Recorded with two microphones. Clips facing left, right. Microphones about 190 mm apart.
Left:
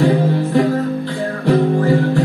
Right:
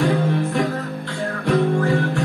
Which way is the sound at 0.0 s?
30° left (ahead or behind).